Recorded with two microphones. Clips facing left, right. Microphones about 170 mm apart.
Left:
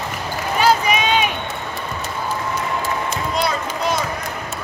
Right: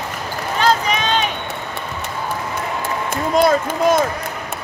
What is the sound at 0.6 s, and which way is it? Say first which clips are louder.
Run: left 1 dB; 10° left (ahead or behind).